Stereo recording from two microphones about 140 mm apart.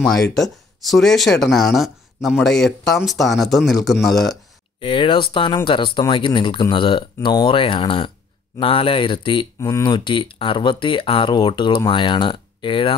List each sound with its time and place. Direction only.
0.0 s speech: centre (ahead or behind)
4.7 s speech: 40° left (ahead or behind)
9.6 s speech: 20° left (ahead or behind)
9.8 s speech: 35° left (ahead or behind)